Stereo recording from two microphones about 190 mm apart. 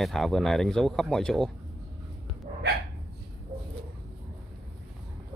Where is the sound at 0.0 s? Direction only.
Centre (ahead or behind).